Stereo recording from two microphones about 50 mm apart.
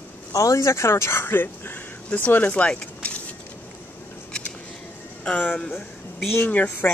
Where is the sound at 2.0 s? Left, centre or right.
Left.